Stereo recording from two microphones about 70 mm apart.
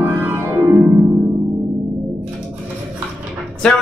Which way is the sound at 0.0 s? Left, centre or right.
Right.